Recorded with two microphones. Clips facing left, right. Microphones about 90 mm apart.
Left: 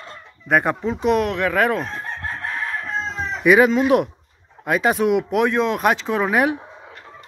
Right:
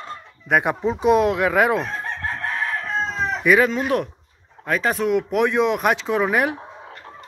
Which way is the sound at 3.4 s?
5° left (ahead or behind).